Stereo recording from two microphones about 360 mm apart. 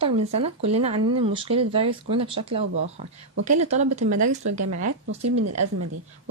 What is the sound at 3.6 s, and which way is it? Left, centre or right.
Speech, centre.